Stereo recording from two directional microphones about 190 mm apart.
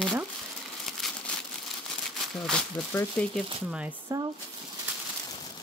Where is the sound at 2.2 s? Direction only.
Centre (ahead or behind).